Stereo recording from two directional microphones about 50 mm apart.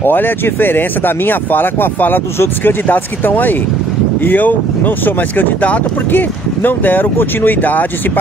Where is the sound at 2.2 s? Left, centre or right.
Left.